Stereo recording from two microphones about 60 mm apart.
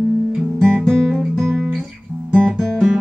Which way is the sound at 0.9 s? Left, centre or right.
Centre.